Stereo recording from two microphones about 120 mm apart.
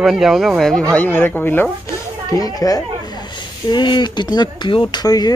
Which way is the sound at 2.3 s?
30° left (ahead or behind).